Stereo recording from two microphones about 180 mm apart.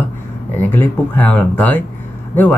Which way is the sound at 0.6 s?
10° left (ahead or behind).